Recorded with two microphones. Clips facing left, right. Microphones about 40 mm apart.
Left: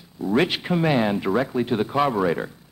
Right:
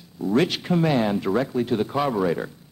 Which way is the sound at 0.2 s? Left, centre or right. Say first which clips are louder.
Even; centre.